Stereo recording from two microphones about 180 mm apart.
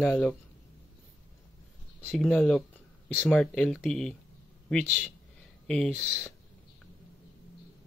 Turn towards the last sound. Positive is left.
turn(degrees=5)  # may be behind; listen again after turning